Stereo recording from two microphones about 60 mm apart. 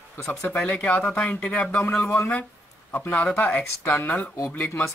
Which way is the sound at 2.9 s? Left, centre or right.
Left.